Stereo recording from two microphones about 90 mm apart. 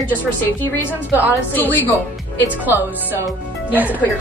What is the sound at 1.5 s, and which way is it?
Speech, 20° left (ahead or behind).